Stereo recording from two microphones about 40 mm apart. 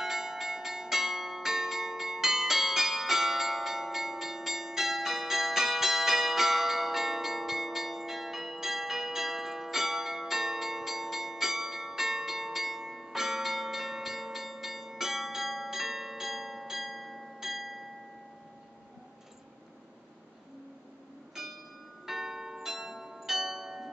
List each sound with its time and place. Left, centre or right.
0.0 s change ringing: centre
21.4 s bell: centre
22.0 s church bell: centre